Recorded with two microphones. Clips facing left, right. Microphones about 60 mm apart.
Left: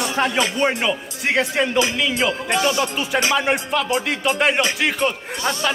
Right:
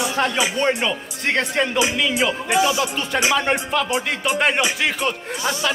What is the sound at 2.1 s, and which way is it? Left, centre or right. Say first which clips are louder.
Music: right 1 dB; centre.